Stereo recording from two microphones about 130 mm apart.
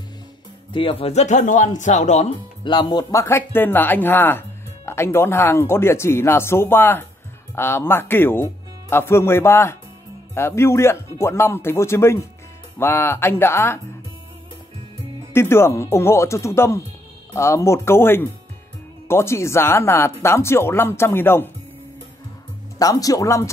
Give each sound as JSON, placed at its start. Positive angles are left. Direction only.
{"t": 0.7, "sound": "speech", "side_deg": 45}
{"t": 2.6, "sound": "speech", "side_deg": 35}
{"t": 15.3, "sound": "speech", "side_deg": 20}
{"t": 22.8, "sound": "speech", "side_deg": 25}